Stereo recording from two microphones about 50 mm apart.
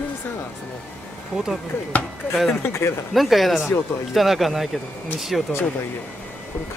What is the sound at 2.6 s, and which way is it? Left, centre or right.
Speech, left.